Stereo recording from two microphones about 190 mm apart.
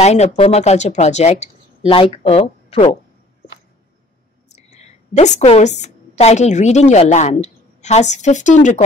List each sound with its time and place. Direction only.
0.0 s speech: 35° left (ahead or behind)
4.7 s a woman's voice: 35° left (ahead or behind)